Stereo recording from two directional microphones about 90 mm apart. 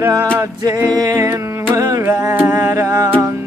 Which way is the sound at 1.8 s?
45° right (ahead or behind).